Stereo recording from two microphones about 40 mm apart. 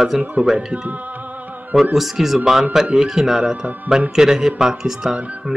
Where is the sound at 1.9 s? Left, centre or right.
Centre.